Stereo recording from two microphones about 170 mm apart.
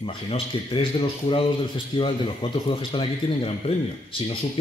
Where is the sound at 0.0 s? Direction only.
35° left (ahead or behind).